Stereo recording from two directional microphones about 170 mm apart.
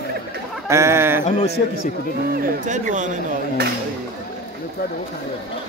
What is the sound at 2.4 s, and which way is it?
Speech, 50° right (ahead or behind).